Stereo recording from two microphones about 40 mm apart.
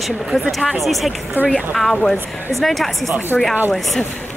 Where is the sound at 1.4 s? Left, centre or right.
Right.